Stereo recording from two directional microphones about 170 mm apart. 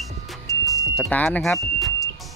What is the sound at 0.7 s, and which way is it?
Music, 5° left (ahead or behind).